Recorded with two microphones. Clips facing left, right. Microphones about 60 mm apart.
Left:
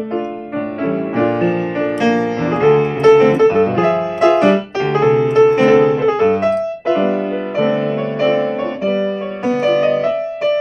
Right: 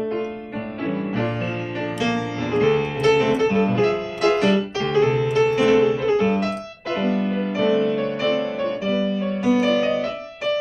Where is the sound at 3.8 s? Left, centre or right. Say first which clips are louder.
Left 7 dB; left.